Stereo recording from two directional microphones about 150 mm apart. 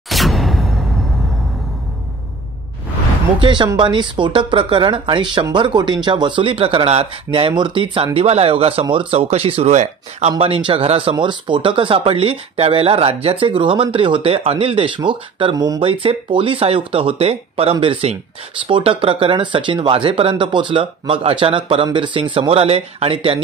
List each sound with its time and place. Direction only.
0.1 s a sound: centre (ahead or behind)
3.3 s speech: 30° right (ahead or behind)
15.5 s speech: 25° right (ahead or behind)
15.8 s speech: 40° right (ahead or behind)